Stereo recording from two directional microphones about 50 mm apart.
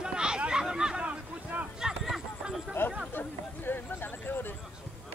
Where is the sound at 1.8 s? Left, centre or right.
Centre.